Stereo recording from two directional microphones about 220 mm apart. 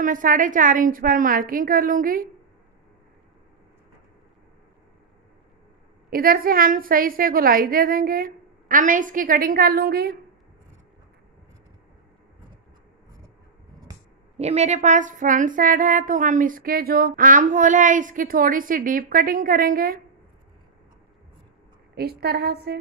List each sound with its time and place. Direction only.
0.0 s female singing: 40° right (ahead or behind)
6.0 s female singing: 40° right (ahead or behind)
14.4 s female singing: 30° right (ahead or behind)
21.9 s a woman's voice: 45° right (ahead or behind)